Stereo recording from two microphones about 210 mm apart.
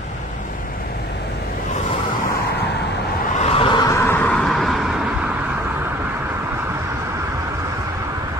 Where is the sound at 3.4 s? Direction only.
25° left (ahead or behind); by 5.3 s 5° right (ahead or behind).